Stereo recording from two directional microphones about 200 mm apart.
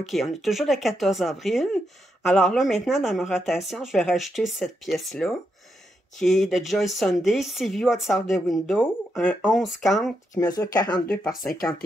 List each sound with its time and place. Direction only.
0.0 s speech: centre (ahead or behind)
10.3 s speech: 15° left (ahead or behind)